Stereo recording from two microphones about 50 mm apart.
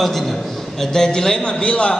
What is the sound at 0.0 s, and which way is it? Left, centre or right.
A man's voice, centre.